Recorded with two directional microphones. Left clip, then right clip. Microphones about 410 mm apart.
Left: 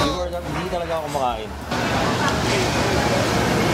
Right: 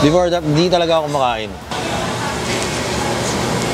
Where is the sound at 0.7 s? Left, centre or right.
Right.